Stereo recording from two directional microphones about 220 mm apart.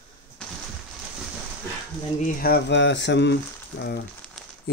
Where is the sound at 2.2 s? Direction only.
45° left (ahead or behind).